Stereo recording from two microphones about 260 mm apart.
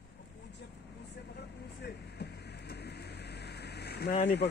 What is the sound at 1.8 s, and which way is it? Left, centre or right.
Vehicle, left.